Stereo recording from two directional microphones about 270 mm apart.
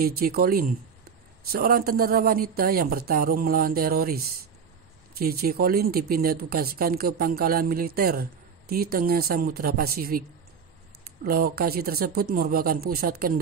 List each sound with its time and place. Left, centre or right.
0.0 s speech: right
5.2 s speech: right
11.2 s speech: right